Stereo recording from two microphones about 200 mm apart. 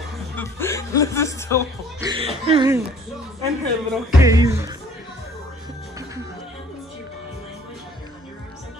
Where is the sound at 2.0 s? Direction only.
20° right (ahead or behind).